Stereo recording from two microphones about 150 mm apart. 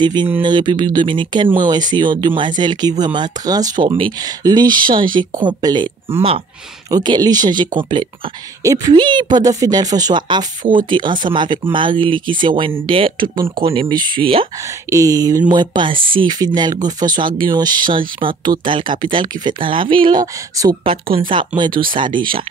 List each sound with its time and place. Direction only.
0.0 s speech: 30° right (ahead or behind)
6.9 s speech: 25° right (ahead or behind)
14.9 s speech: 25° right (ahead or behind)